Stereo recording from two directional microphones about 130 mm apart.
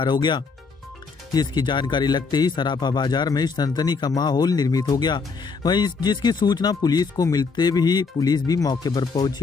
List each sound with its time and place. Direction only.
0.0 s speech: 35° left (ahead or behind)